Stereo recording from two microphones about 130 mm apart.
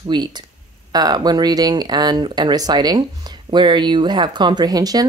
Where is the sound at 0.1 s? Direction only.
35° right (ahead or behind).